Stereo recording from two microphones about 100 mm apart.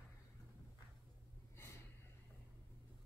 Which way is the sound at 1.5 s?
25° left (ahead or behind).